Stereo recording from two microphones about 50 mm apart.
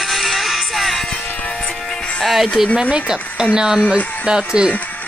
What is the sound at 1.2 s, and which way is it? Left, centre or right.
Music, left.